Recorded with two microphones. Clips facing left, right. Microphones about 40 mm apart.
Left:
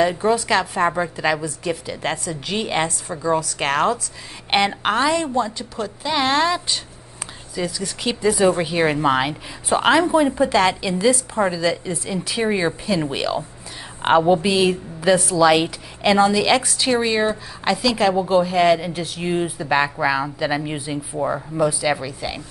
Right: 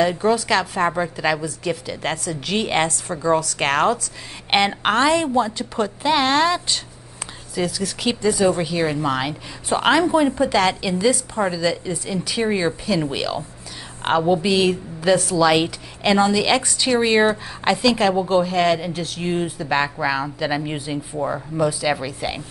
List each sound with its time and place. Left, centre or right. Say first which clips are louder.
0.0 s a woman's voice: even; centre
0.3 s a woman's voice: even; centre
6.2 s a woman's voice: right 1 dB; centre
8.4 s a woman's voice: left 1 dB; centre
9.7 s a woman's voice: left 1 dB; centre
17.0 s speech: right 7 dB; right
17.6 s a woman's voice: right 1 dB; centre
22.0 s a woman's voice: right 2 dB; centre